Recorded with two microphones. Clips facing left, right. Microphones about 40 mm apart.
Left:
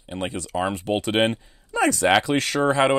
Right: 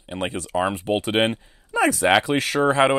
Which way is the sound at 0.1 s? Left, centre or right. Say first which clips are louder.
Right 2 dB; right.